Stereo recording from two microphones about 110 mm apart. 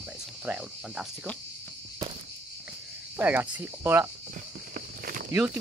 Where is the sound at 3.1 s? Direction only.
15° right (ahead or behind).